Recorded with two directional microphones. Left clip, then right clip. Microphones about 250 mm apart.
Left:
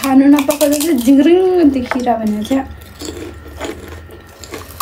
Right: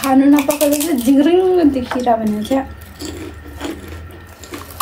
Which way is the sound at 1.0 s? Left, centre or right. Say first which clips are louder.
Left 2 dB; centre.